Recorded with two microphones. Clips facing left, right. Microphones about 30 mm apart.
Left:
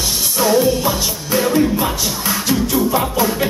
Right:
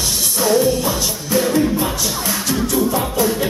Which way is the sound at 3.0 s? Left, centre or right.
Centre.